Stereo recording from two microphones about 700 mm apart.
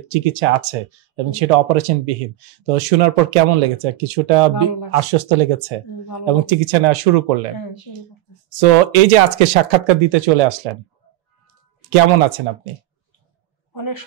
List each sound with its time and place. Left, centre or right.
0.1 s speech: right
8.5 s speech: right
11.9 s speech: right